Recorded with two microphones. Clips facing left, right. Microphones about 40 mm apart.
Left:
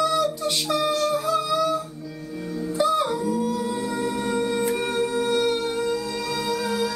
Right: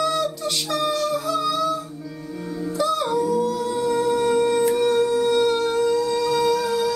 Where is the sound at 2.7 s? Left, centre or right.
Left.